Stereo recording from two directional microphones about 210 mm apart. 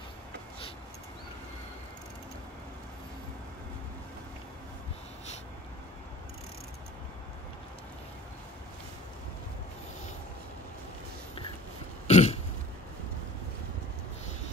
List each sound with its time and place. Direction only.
12.1 s throat clearing: 30° left (ahead or behind)